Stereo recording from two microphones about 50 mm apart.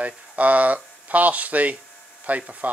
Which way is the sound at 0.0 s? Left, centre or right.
Right.